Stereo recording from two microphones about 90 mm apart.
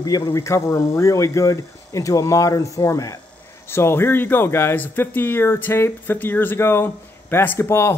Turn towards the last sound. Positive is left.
turn(degrees=30)  # may be behind; listen again after turning